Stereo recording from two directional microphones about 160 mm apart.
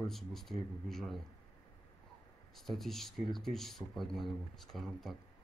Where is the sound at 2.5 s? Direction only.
Centre (ahead or behind).